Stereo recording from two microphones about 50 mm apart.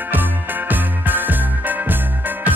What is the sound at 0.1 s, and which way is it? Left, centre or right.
Music, right.